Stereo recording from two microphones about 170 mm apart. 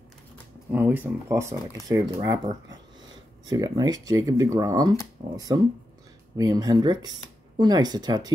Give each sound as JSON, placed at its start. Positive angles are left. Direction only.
{"t": 0.7, "sound": "speech", "side_deg": -10}